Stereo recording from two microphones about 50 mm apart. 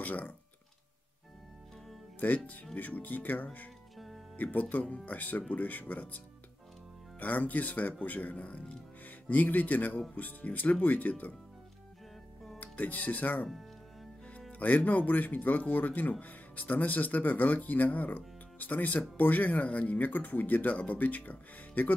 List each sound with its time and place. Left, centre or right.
0.0 s speech: left
2.1 s speech: left
12.5 s speech: left
14.5 s music: left
14.9 s speech: left